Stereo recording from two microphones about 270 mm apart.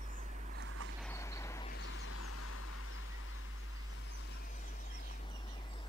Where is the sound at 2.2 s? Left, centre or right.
Left.